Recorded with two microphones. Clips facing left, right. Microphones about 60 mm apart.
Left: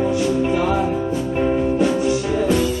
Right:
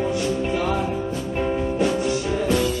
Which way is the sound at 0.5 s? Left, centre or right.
Centre.